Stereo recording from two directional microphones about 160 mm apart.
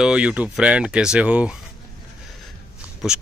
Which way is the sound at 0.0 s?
5° right (ahead or behind).